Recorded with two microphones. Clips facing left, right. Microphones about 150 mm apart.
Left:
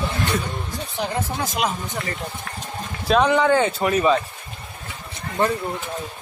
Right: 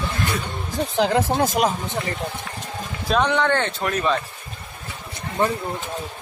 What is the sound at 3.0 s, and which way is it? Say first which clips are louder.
Speech: left 3 dB; centre (ahead or behind).